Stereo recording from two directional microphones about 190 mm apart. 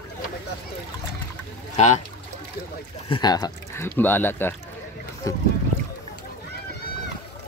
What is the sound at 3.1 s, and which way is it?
Speech, 20° left (ahead or behind).